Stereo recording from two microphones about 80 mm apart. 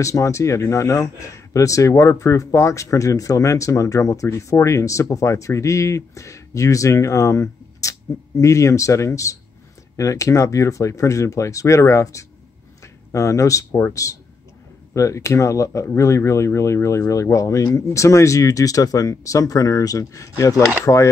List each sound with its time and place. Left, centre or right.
0.0 s speech: left
12.8 s a sound: left
13.7 s a man's voice: left
15.0 s speech: left